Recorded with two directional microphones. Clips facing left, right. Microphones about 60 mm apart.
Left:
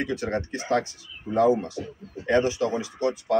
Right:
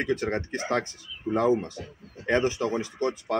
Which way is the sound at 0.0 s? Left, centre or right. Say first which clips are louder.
Even; right.